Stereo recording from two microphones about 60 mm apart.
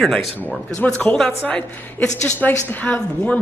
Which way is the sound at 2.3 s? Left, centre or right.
Left.